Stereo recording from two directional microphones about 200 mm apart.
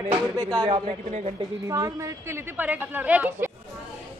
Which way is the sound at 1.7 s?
15° right (ahead or behind).